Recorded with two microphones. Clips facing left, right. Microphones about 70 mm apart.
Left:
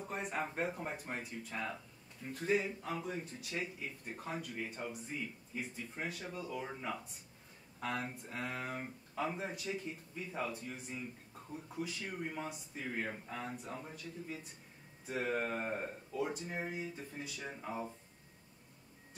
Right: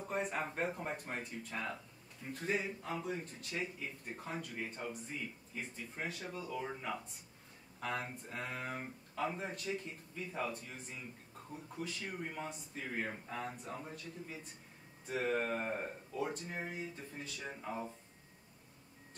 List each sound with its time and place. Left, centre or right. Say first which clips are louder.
0.0 s speech: right 1 dB; centre
15.0 s speech: right 1 dB; centre